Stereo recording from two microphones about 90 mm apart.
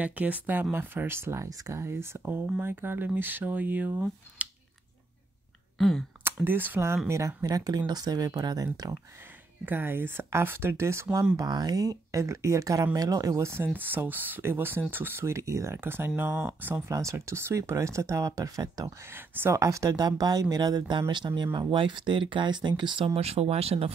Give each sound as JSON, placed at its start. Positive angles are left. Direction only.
{"t": 0.0, "sound": "speech", "side_deg": -15}
{"t": 5.8, "sound": "speech", "side_deg": 5}
{"t": 6.2, "sound": "speech", "side_deg": -20}
{"t": 7.1, "sound": "speech", "side_deg": -40}
{"t": 9.7, "sound": "speech", "side_deg": -25}
{"t": 11.3, "sound": "speech", "side_deg": -50}
{"t": 16.9, "sound": "speech", "side_deg": -35}
{"t": 21.4, "sound": "speech", "side_deg": -60}